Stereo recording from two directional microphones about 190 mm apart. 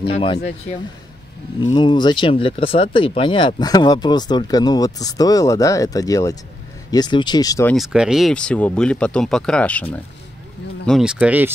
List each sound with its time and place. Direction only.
0.0 s speech: 25° left (ahead or behind)
1.6 s speech: 20° left (ahead or behind)
7.6 s speech: centre (ahead or behind)
10.9 s speech: 5° right (ahead or behind)